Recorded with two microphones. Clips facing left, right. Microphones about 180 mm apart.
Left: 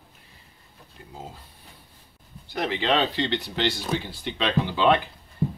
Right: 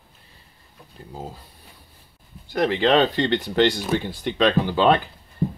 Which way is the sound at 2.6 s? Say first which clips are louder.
Right 6 dB; 45° right (ahead or behind).